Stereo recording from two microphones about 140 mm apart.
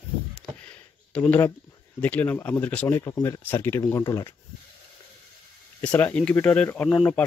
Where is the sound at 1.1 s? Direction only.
10° left (ahead or behind).